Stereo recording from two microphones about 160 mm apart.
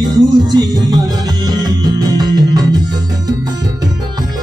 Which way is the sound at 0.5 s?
25° right (ahead or behind).